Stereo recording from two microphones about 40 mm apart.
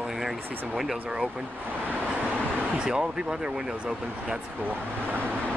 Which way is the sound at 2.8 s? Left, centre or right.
Right.